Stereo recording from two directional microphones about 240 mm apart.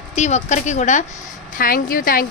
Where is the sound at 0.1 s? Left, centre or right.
Left.